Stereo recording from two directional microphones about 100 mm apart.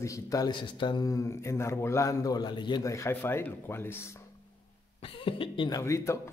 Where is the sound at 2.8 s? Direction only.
30° left (ahead or behind).